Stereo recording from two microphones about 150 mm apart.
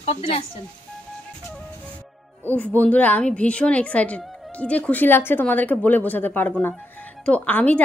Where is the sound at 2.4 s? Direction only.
10° left (ahead or behind).